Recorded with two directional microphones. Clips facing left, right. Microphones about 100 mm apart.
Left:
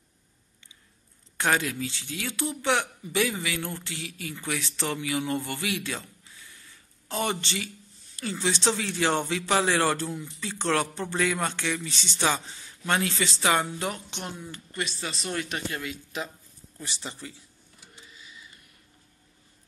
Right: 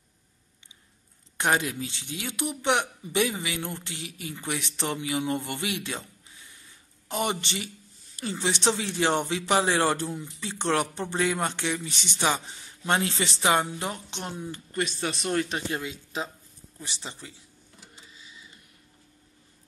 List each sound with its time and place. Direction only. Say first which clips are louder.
1.4 s speech: even; 20° right (ahead or behind)
14.7 s speech: right 4 dB; 45° right (ahead or behind)
15.0 s speech: right 4 dB; 5° right (ahead or behind)
15.3 s speech: right 3 dB; 30° right (ahead or behind)